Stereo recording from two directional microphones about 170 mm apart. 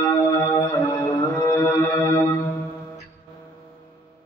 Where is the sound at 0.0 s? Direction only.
15° left (ahead or behind).